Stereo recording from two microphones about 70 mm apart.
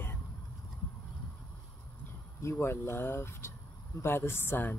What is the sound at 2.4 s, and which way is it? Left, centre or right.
Speech, left.